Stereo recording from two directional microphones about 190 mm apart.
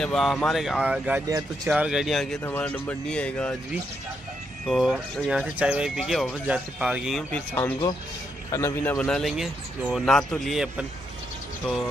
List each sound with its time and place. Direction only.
0.0 s speech: centre (ahead or behind)
1.2 s speech: 20° right (ahead or behind)
1.7 s speech: 5° right (ahead or behind)
4.6 s speech: centre (ahead or behind)